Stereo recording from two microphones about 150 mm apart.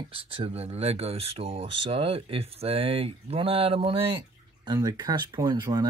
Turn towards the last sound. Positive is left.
turn(degrees=-25)  # may be behind; listen again after turning